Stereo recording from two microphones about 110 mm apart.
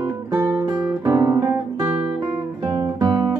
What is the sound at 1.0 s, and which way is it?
Guitar, 30° right (ahead or behind).